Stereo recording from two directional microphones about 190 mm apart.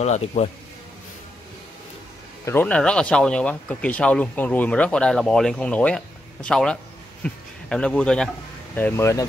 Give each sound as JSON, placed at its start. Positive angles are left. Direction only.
{"t": 0.0, "sound": "a man's voice", "side_deg": 35}
{"t": 2.4, "sound": "speech", "side_deg": 10}